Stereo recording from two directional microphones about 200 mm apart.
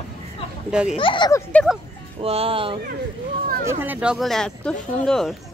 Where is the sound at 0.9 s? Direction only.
25° left (ahead or behind).